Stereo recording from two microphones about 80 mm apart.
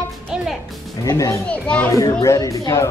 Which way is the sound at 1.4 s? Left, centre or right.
Centre.